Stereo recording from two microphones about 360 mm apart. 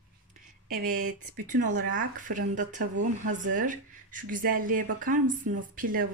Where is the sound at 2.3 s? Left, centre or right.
Right.